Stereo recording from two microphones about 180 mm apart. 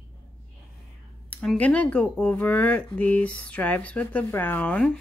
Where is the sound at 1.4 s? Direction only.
5° left (ahead or behind).